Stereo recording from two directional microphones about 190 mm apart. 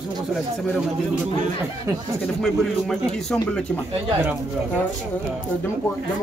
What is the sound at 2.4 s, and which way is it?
Speech, 5° left (ahead or behind).